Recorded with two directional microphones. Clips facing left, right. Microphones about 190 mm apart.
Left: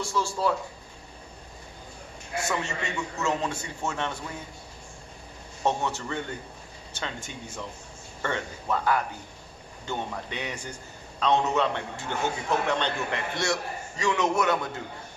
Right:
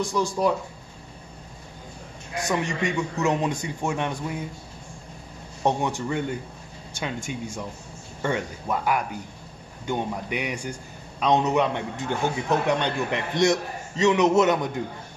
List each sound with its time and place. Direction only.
0.0 s a man's voice: 15° right (ahead or behind)
2.3 s a man's voice: 15° right (ahead or behind)
5.6 s a man's voice: 15° right (ahead or behind)